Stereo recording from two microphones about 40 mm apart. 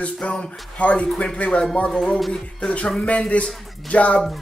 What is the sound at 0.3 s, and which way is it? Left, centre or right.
Speech, left.